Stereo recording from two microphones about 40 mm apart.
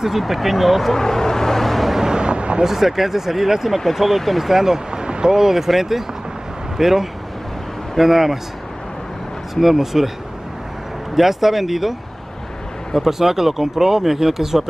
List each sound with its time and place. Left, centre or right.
0.2 s speech: centre
0.9 s vehicle: centre
2.0 s vehicle: centre
2.6 s speech: centre
9.6 s speech: centre
11.1 s speech: centre
12.9 s speech: centre